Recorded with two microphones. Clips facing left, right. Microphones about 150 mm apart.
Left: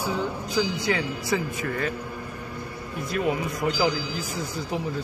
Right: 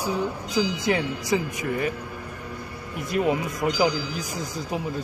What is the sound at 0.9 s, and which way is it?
Speech, 20° right (ahead or behind).